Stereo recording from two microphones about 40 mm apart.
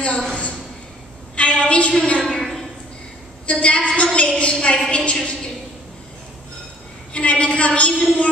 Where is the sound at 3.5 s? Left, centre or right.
Left.